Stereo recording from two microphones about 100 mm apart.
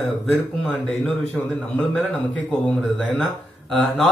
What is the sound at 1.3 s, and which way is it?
Speech, 15° left (ahead or behind).